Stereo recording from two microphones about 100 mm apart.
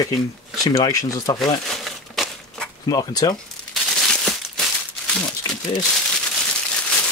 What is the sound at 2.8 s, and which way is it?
Speech, 40° left (ahead or behind).